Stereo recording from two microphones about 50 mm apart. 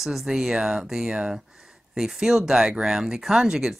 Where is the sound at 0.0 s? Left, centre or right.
Centre.